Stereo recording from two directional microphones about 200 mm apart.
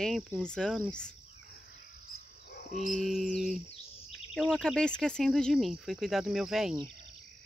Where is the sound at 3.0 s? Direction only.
Centre (ahead or behind).